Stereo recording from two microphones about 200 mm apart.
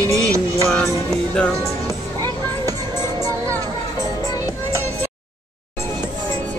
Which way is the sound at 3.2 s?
15° right (ahead or behind).